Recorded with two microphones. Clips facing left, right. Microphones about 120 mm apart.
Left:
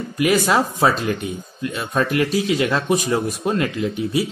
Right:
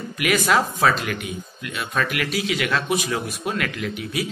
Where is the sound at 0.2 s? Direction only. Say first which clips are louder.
Left 3 dB; 25° left (ahead or behind).